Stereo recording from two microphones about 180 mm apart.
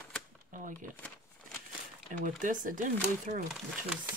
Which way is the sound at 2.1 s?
45° right (ahead or behind).